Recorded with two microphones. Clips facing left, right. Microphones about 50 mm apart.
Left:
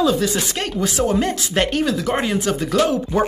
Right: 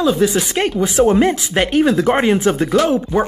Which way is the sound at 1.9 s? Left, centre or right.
Right.